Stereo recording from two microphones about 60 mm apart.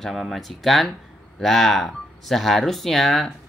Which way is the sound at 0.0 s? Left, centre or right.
Centre.